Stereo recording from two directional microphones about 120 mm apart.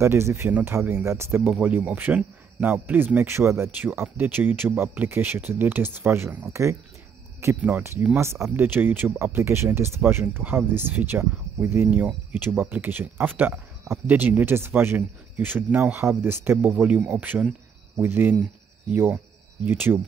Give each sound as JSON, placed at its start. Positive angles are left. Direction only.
{"t": 0.0, "sound": "speech", "side_deg": -20}